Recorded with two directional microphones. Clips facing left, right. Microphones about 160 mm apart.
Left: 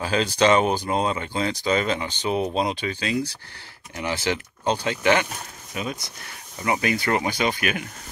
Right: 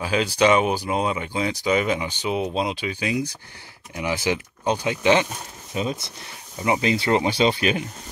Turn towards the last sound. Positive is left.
turn(degrees=-25)  # may be behind; listen again after turning